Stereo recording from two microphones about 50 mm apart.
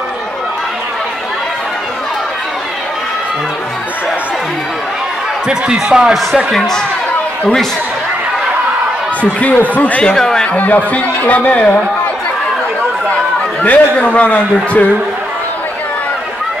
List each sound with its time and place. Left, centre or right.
5.5 s speech: centre
6.5 s speech: centre
9.2 s speech: left
9.9 s speech: centre
10.5 s speech: left
13.6 s a man's voice: left